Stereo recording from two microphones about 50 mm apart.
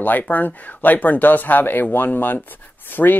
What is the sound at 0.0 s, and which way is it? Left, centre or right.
Speech, left.